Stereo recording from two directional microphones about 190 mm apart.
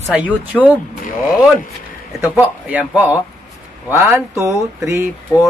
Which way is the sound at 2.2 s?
10° right (ahead or behind).